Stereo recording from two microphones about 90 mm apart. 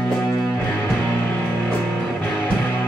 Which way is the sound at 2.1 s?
25° left (ahead or behind).